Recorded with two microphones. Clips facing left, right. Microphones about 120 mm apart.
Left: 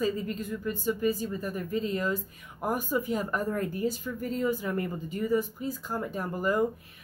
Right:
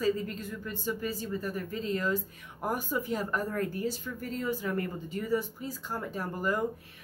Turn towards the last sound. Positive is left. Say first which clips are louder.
# left 4 dB
turn(degrees=15)  # may be behind; listen again after turning